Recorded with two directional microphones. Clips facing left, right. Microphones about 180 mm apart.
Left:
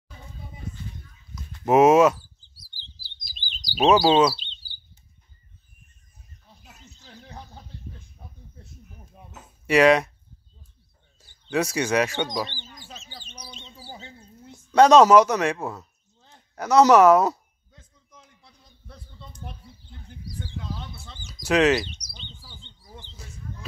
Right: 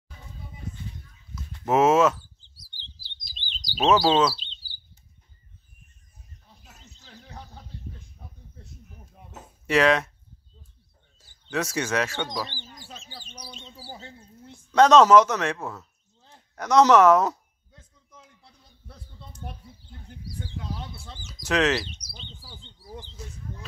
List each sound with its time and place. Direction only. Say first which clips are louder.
1.3 s chirp: left 4 dB; 15° left (ahead or behind)
9.7 s speech: left 4 dB; 10° left (ahead or behind)
11.5 s speech: left 4 dB; 10° left (ahead or behind)
12.4 s bird: even; 35° right (ahead or behind)
13.0 s bird: right 1 dB; 10° right (ahead or behind)
14.7 s speech: left 2 dB; 10° left (ahead or behind)
18.9 s a sound: left 1 dB; 5° right (ahead or behind)
20.2 s bird: left 1 dB; 30° right (ahead or behind)
21.5 s speech: left 4 dB; 10° left (ahead or behind)
22.1 s chirp: right 1 dB; 5° right (ahead or behind)